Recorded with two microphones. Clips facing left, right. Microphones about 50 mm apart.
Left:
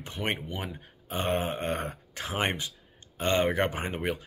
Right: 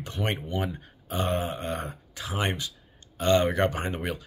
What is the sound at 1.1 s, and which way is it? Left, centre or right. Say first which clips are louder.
Speech: right 1 dB; left.